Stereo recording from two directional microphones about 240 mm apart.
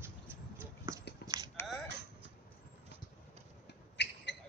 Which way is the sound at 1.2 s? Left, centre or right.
Centre.